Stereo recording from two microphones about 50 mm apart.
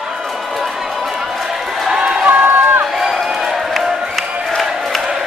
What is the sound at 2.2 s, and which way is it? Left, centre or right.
Run, right.